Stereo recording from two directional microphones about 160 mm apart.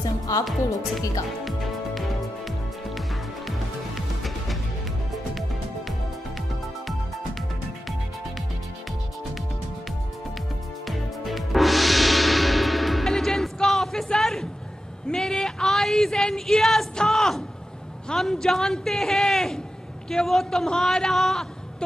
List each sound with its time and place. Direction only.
0.3 s speech: 20° left (ahead or behind)
1.4 s music: centre (ahead or behind)
10.9 s music: centre (ahead or behind)
15.0 s a man's voice: 5° left (ahead or behind)